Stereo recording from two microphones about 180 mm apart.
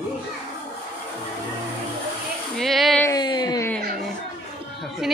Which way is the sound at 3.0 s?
25° left (ahead or behind).